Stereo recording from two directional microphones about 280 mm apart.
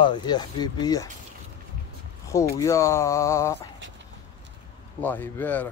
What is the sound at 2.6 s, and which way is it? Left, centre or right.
Speech, centre.